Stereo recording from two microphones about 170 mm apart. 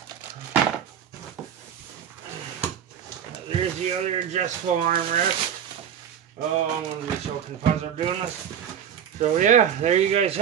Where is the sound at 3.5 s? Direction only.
40° right (ahead or behind).